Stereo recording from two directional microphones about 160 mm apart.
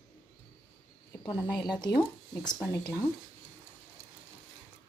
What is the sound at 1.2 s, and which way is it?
Speech, 25° left (ahead or behind).